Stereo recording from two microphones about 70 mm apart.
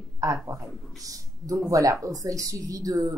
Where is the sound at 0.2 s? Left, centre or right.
Right.